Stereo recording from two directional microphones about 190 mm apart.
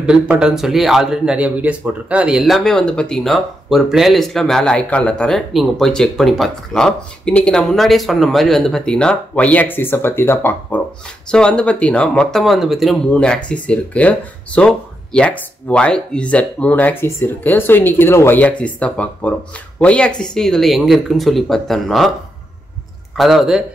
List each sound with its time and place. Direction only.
0.0 s speech: 5° right (ahead or behind)
23.1 s speech: centre (ahead or behind)